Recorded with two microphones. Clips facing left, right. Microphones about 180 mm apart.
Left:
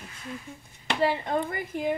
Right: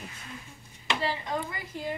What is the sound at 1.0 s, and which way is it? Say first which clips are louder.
Speech: left 8 dB; 55° left (ahead or behind).